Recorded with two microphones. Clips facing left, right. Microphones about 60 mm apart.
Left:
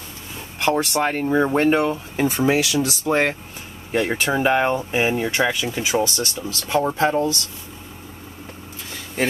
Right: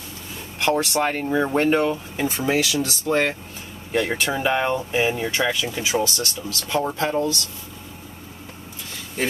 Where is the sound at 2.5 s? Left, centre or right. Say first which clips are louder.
Left 2 dB; left.